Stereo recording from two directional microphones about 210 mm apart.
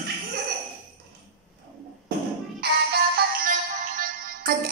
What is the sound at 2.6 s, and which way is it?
Music, 50° right (ahead or behind).